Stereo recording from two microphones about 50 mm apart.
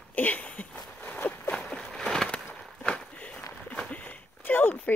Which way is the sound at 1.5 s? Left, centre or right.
Centre.